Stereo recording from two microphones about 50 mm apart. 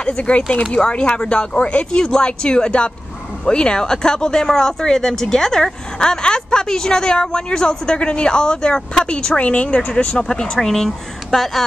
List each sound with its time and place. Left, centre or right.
0.0 s a woman's voice: left; by 11.6 s centre